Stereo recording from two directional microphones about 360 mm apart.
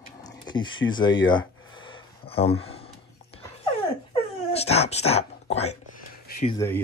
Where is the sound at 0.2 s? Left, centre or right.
Centre.